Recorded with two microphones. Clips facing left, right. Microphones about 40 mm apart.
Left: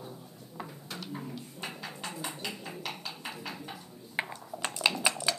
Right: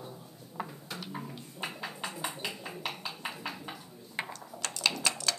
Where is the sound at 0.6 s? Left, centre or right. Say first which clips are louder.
Right 2 dB; centre.